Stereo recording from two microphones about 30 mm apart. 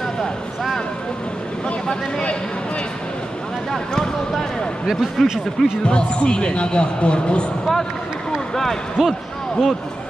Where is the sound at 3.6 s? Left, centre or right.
Centre.